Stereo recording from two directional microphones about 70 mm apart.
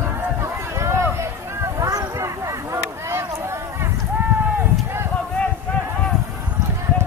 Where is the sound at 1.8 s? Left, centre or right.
Right.